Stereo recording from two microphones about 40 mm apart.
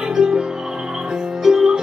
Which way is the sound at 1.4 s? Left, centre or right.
Centre.